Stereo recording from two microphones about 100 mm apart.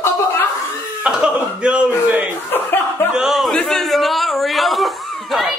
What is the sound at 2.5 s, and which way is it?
Speech, 20° left (ahead or behind).